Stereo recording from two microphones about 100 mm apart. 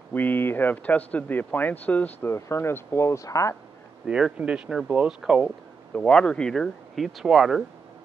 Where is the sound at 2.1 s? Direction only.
25° left (ahead or behind).